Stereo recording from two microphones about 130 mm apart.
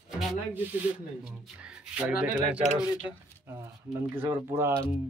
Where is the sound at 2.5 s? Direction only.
10° right (ahead or behind).